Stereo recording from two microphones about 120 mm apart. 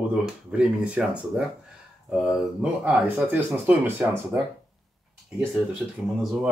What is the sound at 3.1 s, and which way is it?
Speech, 20° right (ahead or behind).